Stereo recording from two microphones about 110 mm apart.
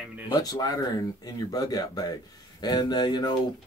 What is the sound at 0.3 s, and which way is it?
Speech, 35° left (ahead or behind).